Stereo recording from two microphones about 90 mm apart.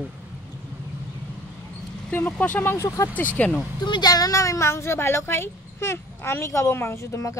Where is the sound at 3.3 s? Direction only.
15° left (ahead or behind).